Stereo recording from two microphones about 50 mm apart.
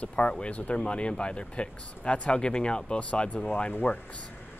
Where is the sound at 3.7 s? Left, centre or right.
Left.